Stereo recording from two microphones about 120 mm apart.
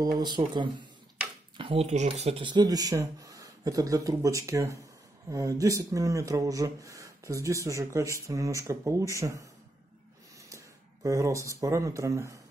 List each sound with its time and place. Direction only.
0.4 s speech: 50° right (ahead or behind)
1.6 s speech: 55° right (ahead or behind)
2.4 s speech: 35° right (ahead or behind)
10.5 s speech: 25° right (ahead or behind)